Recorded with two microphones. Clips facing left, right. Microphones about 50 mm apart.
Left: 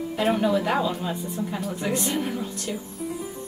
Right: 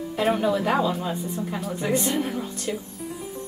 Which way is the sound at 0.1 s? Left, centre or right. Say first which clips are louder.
Even; centre.